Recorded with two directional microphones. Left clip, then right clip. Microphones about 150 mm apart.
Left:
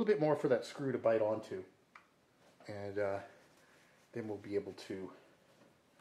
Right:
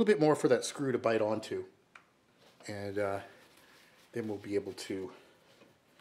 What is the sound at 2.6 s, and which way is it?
A man's voice, 35° right (ahead or behind).